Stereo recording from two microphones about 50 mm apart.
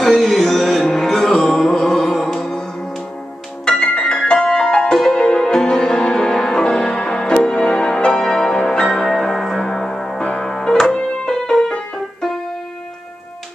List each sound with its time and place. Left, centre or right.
0.0 s music: centre
3.6 s music: centre